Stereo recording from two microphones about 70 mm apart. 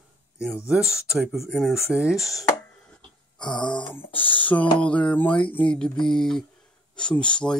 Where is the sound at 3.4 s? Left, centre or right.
Left.